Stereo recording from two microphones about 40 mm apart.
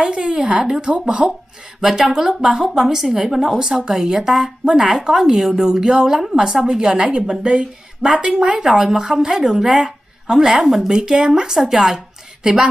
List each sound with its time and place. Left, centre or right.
0.0 s a woman's voice: right; by 10.9 s centre
10.9 s speech: centre
11.7 s a woman's voice: centre
12.4 s speech: centre